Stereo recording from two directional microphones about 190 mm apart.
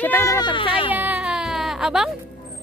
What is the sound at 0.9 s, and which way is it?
Music, 10° right (ahead or behind).